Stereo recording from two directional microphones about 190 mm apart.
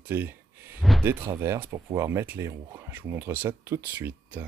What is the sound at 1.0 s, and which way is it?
Speech, 15° right (ahead or behind).